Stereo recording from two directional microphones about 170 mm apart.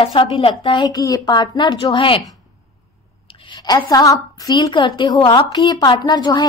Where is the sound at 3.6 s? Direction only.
20° left (ahead or behind).